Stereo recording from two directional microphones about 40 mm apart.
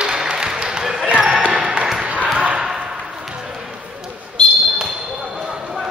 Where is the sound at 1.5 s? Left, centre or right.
Right.